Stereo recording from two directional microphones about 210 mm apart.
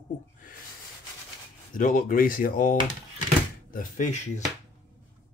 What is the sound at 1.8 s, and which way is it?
Speech, 40° left (ahead or behind).